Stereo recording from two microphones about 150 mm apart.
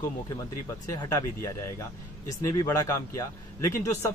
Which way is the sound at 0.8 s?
20° left (ahead or behind).